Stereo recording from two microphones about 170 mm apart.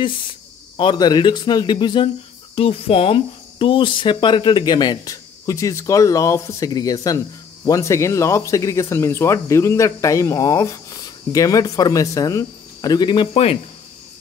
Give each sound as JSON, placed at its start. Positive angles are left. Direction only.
{"t": 0.7, "sound": "speech", "side_deg": 25}